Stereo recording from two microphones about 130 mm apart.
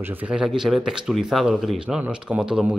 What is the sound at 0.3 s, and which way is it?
A man's voice, 5° right (ahead or behind).